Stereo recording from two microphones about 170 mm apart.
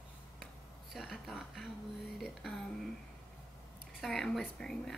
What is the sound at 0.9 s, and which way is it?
Speech, centre (ahead or behind).